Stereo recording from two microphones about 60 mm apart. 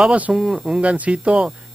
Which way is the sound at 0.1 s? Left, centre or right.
Centre.